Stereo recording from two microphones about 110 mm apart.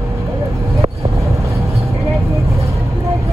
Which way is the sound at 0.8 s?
25° right (ahead or behind).